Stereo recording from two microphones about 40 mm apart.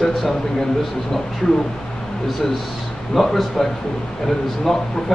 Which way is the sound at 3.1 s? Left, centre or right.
Centre.